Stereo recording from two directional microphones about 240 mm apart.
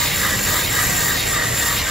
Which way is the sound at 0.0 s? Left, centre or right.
Centre.